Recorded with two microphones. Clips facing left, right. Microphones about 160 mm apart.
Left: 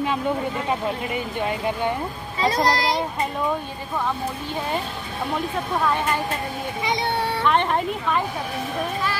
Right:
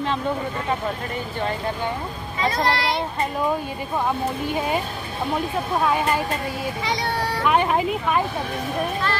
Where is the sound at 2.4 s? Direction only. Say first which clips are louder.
Left 2 dB; 35° left (ahead or behind).